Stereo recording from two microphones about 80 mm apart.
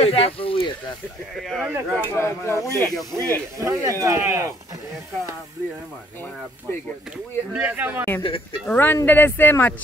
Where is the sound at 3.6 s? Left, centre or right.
Right.